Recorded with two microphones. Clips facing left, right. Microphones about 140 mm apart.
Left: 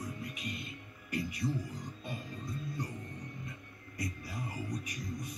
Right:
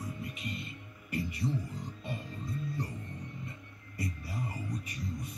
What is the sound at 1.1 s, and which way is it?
Speech, 25° right (ahead or behind).